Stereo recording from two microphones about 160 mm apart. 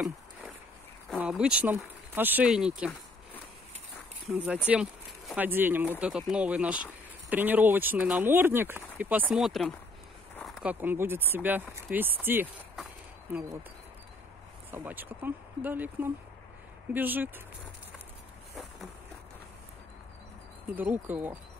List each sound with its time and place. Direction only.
1.2 s speech: 5° right (ahead or behind)
4.3 s speech: 5° right (ahead or behind)
14.7 s speech: 10° right (ahead or behind)
20.7 s speech: 10° right (ahead or behind)